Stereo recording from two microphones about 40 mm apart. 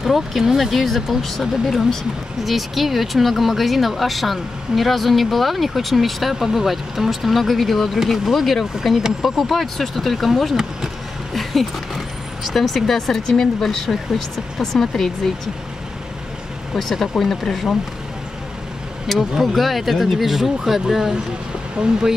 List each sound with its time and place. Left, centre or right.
0.0 s speech: centre
11.3 s speech: centre
16.7 s speech: centre
19.1 s speech: centre